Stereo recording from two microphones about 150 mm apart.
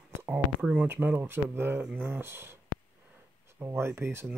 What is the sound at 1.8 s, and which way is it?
Speech, 10° right (ahead or behind).